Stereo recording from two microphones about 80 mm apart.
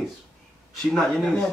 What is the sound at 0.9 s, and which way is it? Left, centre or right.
Speech, centre.